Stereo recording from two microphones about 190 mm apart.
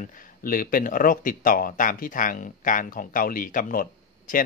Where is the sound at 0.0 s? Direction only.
45° left (ahead or behind).